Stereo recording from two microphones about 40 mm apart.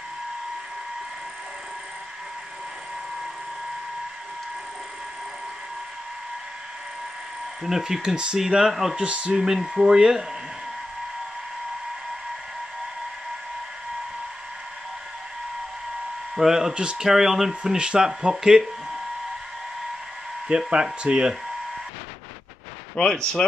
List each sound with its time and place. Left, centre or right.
7.6 s speech: centre
8.9 s speech: right
9.3 s speech: centre
16.3 s speech: centre
20.4 s speech: right
22.9 s speech: centre